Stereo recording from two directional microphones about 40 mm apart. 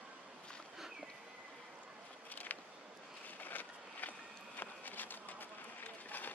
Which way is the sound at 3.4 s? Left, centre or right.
Left.